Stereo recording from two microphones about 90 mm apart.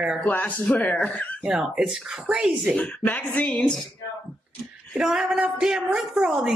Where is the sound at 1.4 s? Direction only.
5° right (ahead or behind).